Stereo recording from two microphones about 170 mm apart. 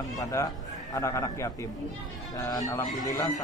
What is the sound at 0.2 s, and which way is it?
A man's voice, 15° left (ahead or behind).